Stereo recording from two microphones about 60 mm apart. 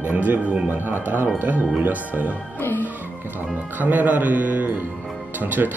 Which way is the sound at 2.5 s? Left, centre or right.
Left.